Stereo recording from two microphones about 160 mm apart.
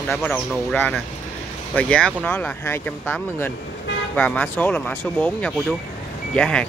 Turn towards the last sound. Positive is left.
turn(degrees=5)  # may be behind; listen again after turning